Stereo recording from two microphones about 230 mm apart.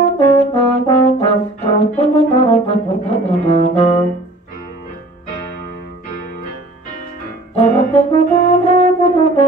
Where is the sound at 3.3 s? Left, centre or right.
Left.